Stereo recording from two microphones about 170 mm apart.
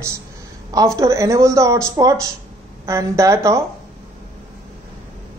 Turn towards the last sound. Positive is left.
turn(degrees=-15)  # may be behind; listen again after turning